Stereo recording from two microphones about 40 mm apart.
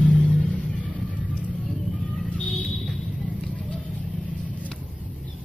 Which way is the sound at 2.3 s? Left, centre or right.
Left.